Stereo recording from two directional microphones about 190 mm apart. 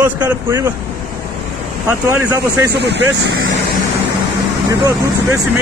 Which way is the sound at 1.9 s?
15° right (ahead or behind).